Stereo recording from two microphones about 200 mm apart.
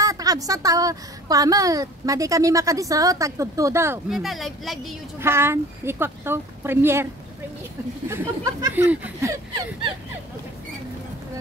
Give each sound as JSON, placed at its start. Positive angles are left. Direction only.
{"t": 0.0, "sound": "a woman's voice", "side_deg": -15}
{"t": 4.1, "sound": "speech", "side_deg": 0}
{"t": 5.2, "sound": "a woman's voice", "side_deg": -10}
{"t": 8.1, "sound": "a woman's voice", "side_deg": -15}